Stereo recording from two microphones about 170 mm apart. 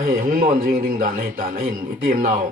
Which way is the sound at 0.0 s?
55° right (ahead or behind).